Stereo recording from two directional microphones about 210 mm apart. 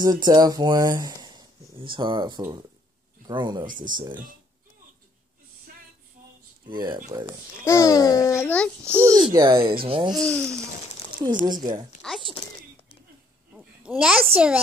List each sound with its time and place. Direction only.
0.0 s speech: 20° right (ahead or behind)
3.6 s speech: 40° right (ahead or behind)
3.9 s speech: 20° right (ahead or behind)
6.7 s a child's voice: 20° right (ahead or behind)
7.6 s a child's voice: 15° left (ahead or behind)
8.8 s a child's voice: 10° right (ahead or behind)
10.1 s speech: 5° left (ahead or behind)
11.4 s speech: 20° right (ahead or behind)
12.0 s speech: centre (ahead or behind)
13.6 s a child's voice: 5° right (ahead or behind)